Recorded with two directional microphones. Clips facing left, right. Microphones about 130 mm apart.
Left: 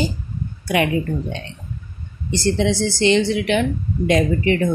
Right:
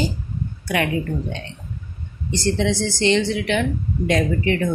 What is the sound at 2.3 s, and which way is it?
A woman's voice, 10° left (ahead or behind).